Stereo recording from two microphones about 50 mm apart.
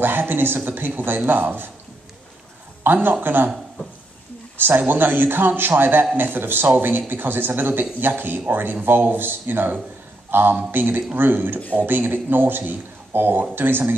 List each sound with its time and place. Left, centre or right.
0.0 s speech: right
2.8 s speech: right
4.6 s speech: right